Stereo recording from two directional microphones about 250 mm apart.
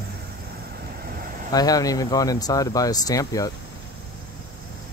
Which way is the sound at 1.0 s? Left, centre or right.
Right.